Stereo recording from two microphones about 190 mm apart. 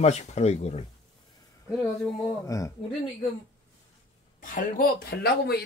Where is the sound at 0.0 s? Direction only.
35° left (ahead or behind).